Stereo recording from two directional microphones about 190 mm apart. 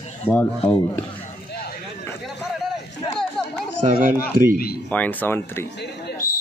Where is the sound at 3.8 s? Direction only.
45° right (ahead or behind).